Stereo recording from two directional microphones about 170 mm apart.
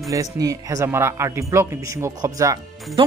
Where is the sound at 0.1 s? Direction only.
20° right (ahead or behind).